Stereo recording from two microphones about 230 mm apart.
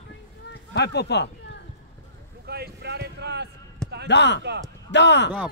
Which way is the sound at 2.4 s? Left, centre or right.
Right.